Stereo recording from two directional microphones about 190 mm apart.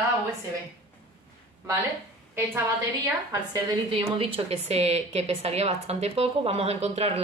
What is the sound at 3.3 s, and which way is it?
A woman's voice, 20° right (ahead or behind).